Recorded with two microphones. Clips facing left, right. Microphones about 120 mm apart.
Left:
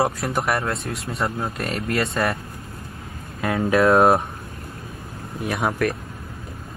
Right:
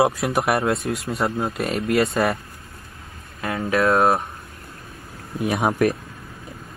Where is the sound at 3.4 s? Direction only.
25° left (ahead or behind).